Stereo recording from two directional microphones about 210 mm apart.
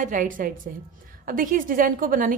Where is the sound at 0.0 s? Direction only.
40° right (ahead or behind).